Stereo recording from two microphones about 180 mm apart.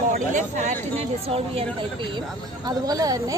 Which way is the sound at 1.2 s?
30° right (ahead or behind).